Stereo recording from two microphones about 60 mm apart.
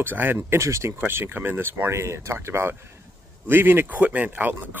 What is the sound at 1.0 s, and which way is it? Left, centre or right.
Speech, right.